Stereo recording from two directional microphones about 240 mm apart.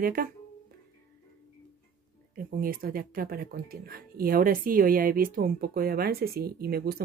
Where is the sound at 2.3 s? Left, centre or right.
Right.